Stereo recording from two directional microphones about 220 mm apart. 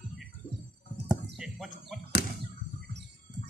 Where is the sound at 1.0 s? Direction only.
Centre (ahead or behind).